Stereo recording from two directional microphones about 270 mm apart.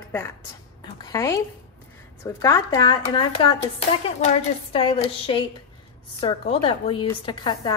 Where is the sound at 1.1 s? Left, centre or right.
Centre.